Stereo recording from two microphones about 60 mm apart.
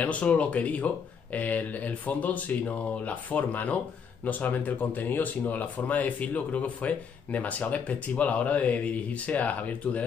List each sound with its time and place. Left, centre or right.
0.0 s speech: left